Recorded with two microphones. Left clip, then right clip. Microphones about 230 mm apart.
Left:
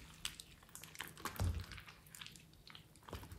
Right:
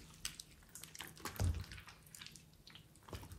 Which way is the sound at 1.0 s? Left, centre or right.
Centre.